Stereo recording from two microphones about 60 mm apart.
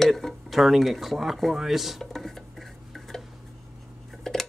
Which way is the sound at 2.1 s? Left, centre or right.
Centre.